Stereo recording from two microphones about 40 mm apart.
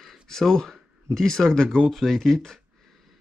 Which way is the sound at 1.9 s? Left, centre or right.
Centre.